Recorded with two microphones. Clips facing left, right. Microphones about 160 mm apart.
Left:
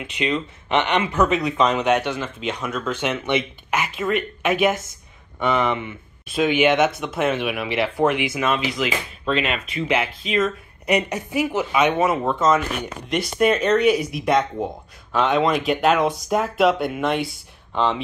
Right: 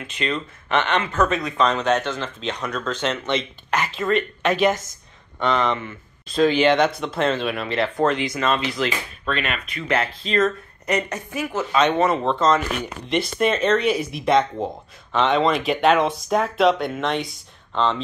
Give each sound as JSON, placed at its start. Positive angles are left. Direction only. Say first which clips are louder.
{"t": 0.0, "sound": "speech", "louder": "left 3 dB", "side_deg": 15}
{"t": 9.2, "sound": "speech", "louder": "left 4 dB", "side_deg": 20}
{"t": 9.8, "sound": "speech", "louder": "right 1 dB", "side_deg": 5}
{"t": 10.9, "sound": "speech", "louder": "left 3 dB", "side_deg": 15}